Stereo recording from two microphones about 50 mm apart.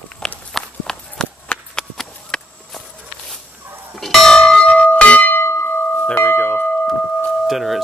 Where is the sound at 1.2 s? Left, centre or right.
Left.